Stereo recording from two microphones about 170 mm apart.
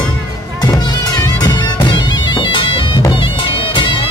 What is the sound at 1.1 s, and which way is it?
Bagpipes, 25° left (ahead or behind).